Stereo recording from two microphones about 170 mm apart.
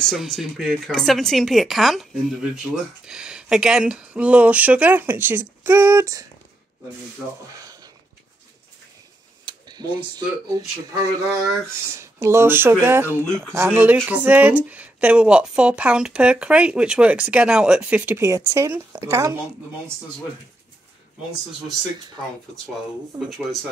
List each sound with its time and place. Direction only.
0.0 s speech: centre (ahead or behind); by 6.2 s 15° right (ahead or behind)
7.5 s a sound: 20° right (ahead or behind)
9.5 s speech: 25° right (ahead or behind)
13.2 s speech: 5° left (ahead or behind)
13.6 s speech: 10° right (ahead or behind)